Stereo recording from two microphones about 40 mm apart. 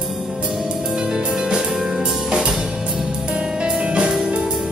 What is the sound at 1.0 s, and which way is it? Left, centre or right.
Music, right.